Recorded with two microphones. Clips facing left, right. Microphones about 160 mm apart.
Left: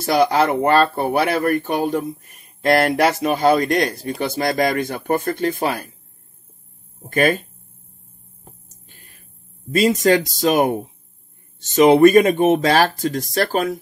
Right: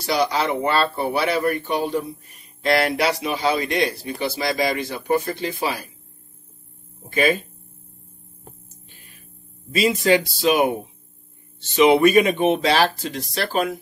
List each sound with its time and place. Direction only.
0.0 s speech: 50° left (ahead or behind)
7.1 s speech: 45° left (ahead or behind)
9.7 s speech: 45° left (ahead or behind)